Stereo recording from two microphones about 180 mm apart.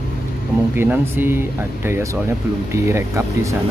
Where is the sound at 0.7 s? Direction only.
10° right (ahead or behind).